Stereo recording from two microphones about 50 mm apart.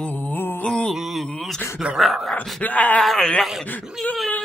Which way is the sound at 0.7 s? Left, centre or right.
Centre.